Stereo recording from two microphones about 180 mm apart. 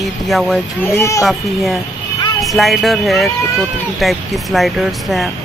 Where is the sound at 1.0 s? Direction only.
15° left (ahead or behind).